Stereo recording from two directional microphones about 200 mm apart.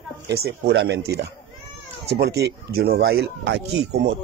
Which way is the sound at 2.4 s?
50° right (ahead or behind).